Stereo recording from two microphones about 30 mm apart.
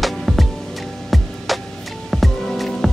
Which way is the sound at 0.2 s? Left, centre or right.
Centre.